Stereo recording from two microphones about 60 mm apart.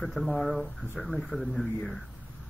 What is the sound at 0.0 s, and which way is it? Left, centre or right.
Speech, centre.